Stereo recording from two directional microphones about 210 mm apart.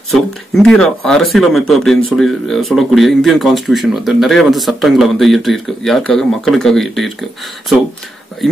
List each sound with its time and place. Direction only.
0.1 s speech: centre (ahead or behind)